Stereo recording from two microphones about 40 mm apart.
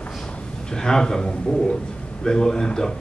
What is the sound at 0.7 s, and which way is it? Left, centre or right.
Speech, centre.